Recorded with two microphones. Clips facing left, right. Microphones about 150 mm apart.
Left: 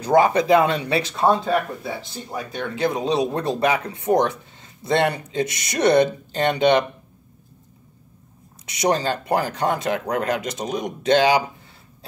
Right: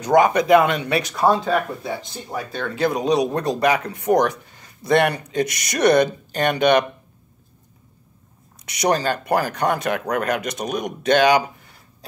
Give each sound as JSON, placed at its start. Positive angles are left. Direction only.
{"t": 0.0, "sound": "speech", "side_deg": 30}
{"t": 2.5, "sound": "speech", "side_deg": 20}
{"t": 8.6, "sound": "speech", "side_deg": 25}